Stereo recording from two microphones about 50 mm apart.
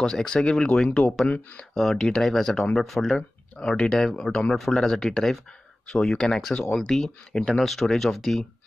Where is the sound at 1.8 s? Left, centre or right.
Centre.